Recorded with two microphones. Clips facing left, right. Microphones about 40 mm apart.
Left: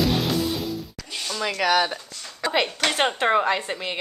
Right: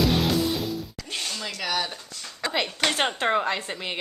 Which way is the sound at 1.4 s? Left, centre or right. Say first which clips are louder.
Left 10 dB; left.